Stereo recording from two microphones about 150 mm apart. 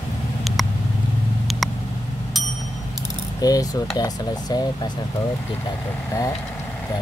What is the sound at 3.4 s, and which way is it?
Speech, 25° left (ahead or behind).